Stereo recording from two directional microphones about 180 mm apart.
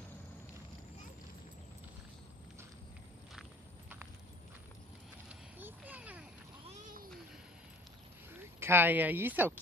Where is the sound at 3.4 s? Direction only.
10° right (ahead or behind).